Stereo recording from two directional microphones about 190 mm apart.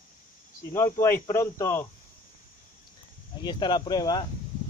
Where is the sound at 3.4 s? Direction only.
25° left (ahead or behind).